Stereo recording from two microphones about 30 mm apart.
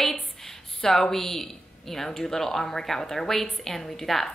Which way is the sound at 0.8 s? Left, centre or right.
Left.